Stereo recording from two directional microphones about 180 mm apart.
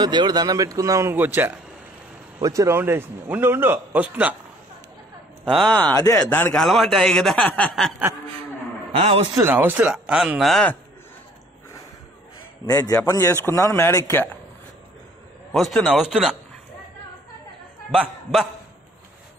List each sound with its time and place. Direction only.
0.0 s a man's voice: 25° right (ahead or behind); by 4.4 s 10° right (ahead or behind)
5.4 s speech: 5° left (ahead or behind)
9.4 s speech: 10° right (ahead or behind); by 10.8 s 5° left (ahead or behind)
12.6 s a man's voice: 20° left (ahead or behind)
15.5 s speech: centre (ahead or behind)
17.9 s speech: centre (ahead or behind)